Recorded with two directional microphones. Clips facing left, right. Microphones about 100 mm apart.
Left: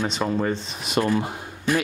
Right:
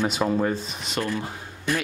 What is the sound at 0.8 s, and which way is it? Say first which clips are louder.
Speech: left 5 dB; 15° left (ahead or behind).